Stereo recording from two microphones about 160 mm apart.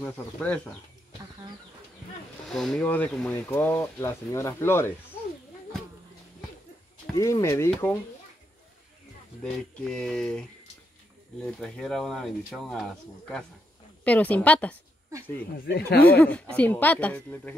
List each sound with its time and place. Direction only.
0.0 s speech: 10° left (ahead or behind)
2.4 s speech: centre (ahead or behind)
7.2 s speech: 20° left (ahead or behind)
9.4 s speech: 5° left (ahead or behind)
11.4 s speech: 5° left (ahead or behind)
15.7 s speech: 85° left
16.1 s speech: 10° left (ahead or behind)